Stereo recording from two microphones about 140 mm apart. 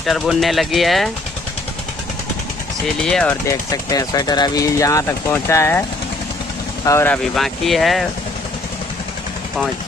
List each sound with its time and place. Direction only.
0.0 s speech: centre (ahead or behind)
3.0 s speech: 5° left (ahead or behind)
3.4 s speech: 25° left (ahead or behind)
7.3 s speech: centre (ahead or behind)